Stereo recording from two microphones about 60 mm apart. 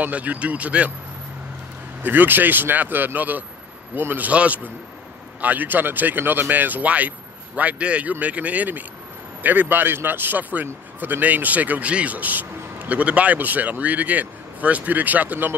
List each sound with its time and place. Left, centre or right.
0.0 s a man's voice: right
2.0 s speech: right
4.3 s a man's voice: right